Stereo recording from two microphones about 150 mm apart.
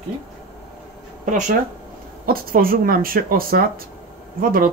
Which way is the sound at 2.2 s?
80° right.